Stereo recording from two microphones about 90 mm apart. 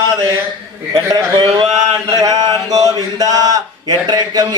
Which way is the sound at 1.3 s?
65° right (ahead or behind).